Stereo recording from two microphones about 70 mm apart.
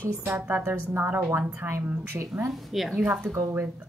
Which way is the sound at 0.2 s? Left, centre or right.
Right.